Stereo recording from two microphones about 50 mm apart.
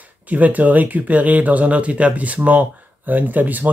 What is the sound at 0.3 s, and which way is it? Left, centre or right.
Speech, right.